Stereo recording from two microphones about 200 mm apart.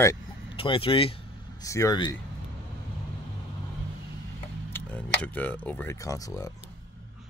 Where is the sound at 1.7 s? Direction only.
15° left (ahead or behind).